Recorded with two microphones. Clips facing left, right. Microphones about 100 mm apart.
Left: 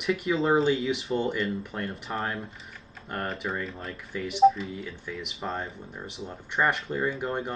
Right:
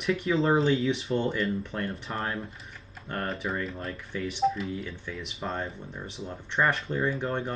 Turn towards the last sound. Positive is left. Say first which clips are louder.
# even
turn(degrees=5)  # may be behind; listen again after turning